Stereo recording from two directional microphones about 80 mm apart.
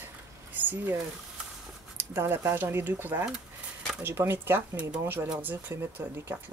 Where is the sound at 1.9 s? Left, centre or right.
Right.